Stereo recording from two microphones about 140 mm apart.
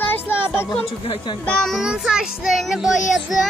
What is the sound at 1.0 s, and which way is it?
Speech, 35° left (ahead or behind).